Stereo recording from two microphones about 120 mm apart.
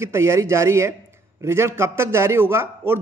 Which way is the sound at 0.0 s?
20° right (ahead or behind).